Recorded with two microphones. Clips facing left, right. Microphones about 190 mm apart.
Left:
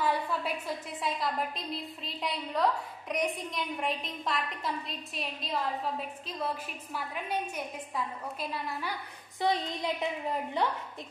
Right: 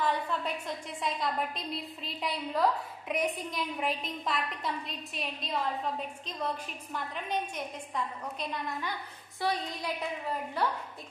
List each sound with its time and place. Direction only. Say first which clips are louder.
0.0 s a woman's voice: left 1 dB; 10° left (ahead or behind)
9.4 s a woman's voice: left 3 dB; 20° left (ahead or behind)